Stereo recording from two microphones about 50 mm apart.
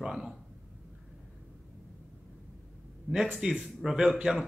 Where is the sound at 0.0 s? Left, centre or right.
Centre.